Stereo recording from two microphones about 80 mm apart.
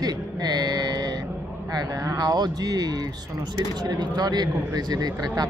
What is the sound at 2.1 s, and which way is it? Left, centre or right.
Speech, right.